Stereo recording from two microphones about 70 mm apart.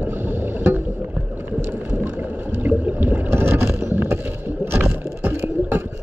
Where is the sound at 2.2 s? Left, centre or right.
Right.